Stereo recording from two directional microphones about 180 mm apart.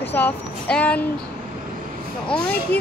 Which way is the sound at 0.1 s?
10° left (ahead or behind).